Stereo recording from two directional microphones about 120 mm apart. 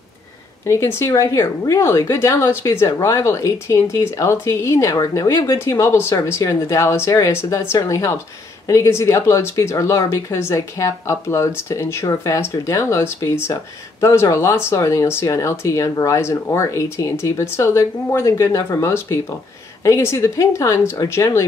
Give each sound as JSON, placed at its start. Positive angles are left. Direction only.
{"t": 0.7, "sound": "a woman's voice", "side_deg": 25}